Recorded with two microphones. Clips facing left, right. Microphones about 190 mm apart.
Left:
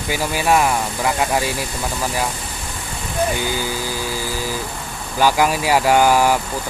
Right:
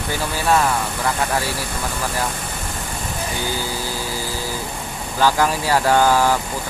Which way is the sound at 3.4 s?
15° left (ahead or behind).